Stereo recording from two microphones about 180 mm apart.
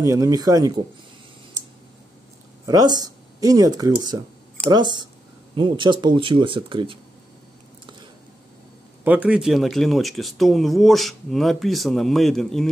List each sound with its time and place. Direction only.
0.0 s speech: 20° right (ahead or behind)
2.6 s speech: 20° right (ahead or behind)
9.0 s speech: 10° right (ahead or behind)